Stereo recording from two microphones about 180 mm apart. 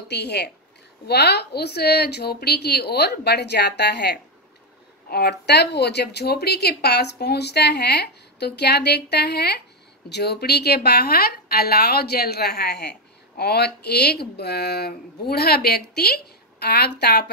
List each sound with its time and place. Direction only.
0.1 s a woman's voice: 65° left (ahead or behind)